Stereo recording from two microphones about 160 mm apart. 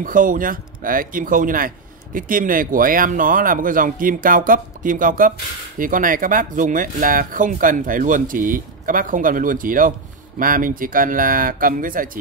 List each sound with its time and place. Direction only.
0.0 s speech: 55° right (ahead or behind)